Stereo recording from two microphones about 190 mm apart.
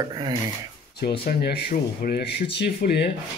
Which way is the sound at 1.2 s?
55° left (ahead or behind).